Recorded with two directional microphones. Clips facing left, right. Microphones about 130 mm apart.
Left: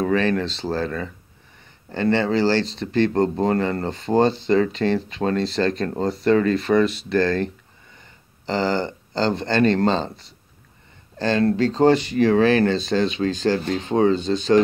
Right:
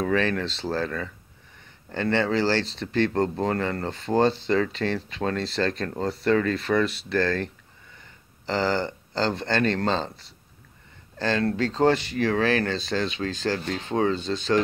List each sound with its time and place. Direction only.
0.0 s speech: 10° left (ahead or behind)
8.5 s speech: 20° left (ahead or behind)
11.1 s speech: 20° left (ahead or behind)